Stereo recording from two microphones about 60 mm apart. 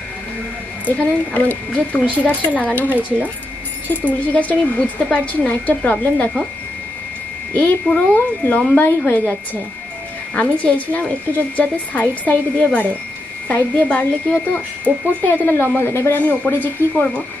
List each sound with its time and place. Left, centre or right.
0.8 s speech: left
3.0 s speech: right
4.0 s speech: left
7.5 s speech: left
10.3 s speech: left
15.4 s speech: left
16.3 s speech: left